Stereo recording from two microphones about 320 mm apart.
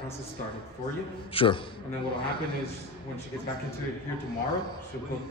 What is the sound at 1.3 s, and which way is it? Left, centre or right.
Speech, centre.